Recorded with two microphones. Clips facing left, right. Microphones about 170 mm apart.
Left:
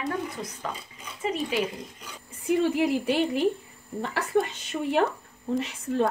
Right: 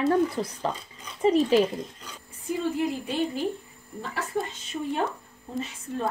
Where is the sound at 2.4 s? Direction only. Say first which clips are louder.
Left 4 dB; 85° left.